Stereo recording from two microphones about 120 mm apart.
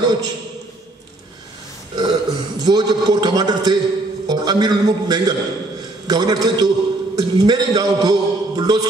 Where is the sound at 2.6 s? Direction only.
35° right (ahead or behind).